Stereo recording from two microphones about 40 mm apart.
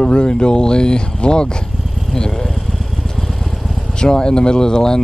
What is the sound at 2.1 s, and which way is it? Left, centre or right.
Vehicle, centre.